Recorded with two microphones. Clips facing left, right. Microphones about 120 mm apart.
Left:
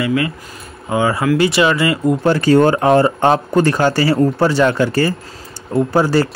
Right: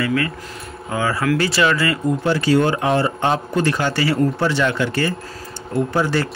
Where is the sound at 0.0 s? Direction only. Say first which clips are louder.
Left 3 dB; 15° left (ahead or behind).